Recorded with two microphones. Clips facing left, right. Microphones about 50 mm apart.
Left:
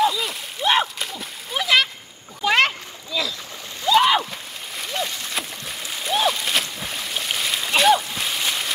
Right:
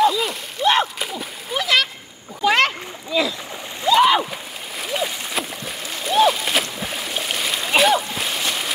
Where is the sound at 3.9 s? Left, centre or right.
Centre.